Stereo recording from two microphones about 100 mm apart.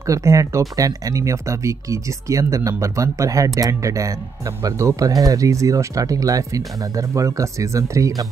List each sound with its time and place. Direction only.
0.0 s speech: 35° right (ahead or behind)